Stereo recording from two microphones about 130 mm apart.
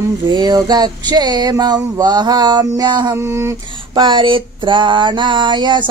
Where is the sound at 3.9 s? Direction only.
35° right (ahead or behind).